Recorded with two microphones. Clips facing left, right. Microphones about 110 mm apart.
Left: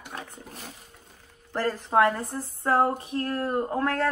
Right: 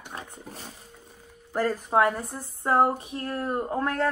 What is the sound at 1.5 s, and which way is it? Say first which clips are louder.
Speech: even; 5° right (ahead or behind).